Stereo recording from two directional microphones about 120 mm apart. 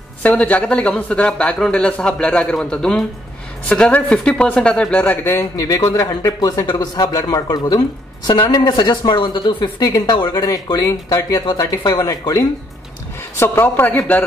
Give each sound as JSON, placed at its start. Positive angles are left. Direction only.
{"t": 0.2, "sound": "speech", "side_deg": 10}
{"t": 5.6, "sound": "speech", "side_deg": 30}
{"t": 13.4, "sound": "speech", "side_deg": 20}